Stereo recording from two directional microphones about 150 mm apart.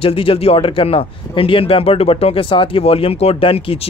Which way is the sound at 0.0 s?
40° left (ahead or behind).